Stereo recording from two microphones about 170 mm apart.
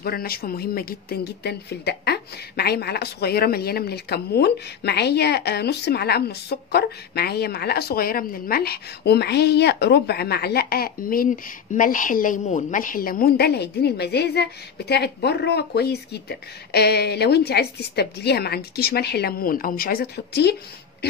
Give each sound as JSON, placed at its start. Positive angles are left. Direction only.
{"t": 0.0, "sound": "speech", "side_deg": 65}